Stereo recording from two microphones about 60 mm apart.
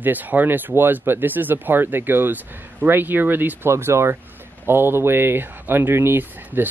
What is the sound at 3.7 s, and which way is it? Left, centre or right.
Speech, right.